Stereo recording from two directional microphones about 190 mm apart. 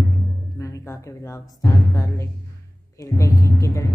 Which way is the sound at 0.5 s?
15° left (ahead or behind).